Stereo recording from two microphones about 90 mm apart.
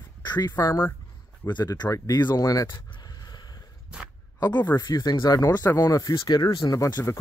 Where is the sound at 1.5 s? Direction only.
50° left (ahead or behind).